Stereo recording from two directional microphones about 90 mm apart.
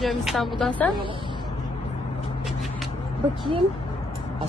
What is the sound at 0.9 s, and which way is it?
Speech, 70° right (ahead or behind).